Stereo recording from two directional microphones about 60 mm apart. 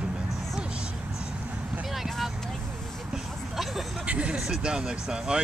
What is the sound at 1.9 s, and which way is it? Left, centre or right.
Vehicle, centre.